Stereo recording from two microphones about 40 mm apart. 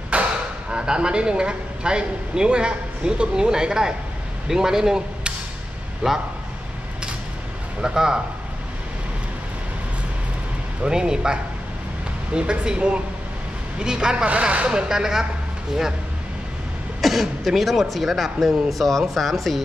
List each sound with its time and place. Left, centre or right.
0.1 s a man's voice: right
7.8 s a man's voice: centre
10.8 s speech: centre
12.4 s speech: right
14.1 s speech: right
14.7 s a man's voice: centre
17.0 s throat clearing: centre
17.5 s speech: centre